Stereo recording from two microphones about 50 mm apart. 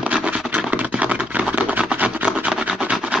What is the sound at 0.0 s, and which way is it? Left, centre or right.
Scratch, right.